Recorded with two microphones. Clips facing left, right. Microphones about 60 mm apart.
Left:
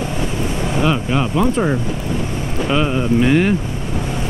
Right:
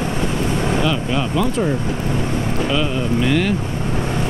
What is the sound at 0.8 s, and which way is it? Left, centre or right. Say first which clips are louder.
Speech: left 2 dB; left.